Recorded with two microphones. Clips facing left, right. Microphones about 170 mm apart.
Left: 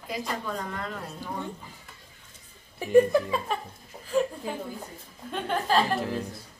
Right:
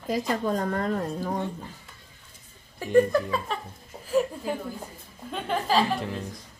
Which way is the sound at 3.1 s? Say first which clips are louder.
Left 1 dB; 10° left (ahead or behind).